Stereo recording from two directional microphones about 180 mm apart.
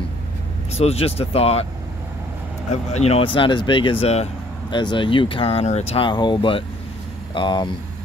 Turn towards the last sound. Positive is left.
turn(degrees=25)  # may be behind; listen again after turning